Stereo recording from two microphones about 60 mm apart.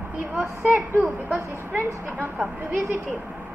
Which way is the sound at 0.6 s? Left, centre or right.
Right.